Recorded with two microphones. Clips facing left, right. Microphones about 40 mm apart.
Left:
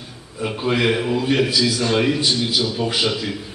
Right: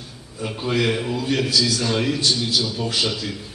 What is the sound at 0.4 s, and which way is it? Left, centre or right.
A man's voice, centre.